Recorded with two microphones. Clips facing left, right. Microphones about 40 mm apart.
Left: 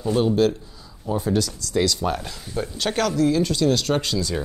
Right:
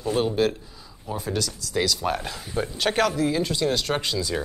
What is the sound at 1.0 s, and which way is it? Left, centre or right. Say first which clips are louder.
Speech: left 5 dB; centre.